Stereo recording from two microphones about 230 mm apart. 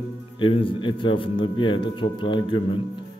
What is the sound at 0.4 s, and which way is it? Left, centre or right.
A man's voice, left.